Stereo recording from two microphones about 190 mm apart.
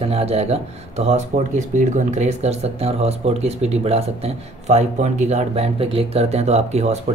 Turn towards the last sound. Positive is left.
turn(degrees=-35)  # may be behind; listen again after turning